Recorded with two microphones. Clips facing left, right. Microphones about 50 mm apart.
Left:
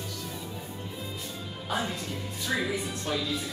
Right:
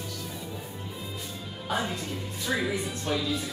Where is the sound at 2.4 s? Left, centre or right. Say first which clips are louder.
Right 1 dB; centre.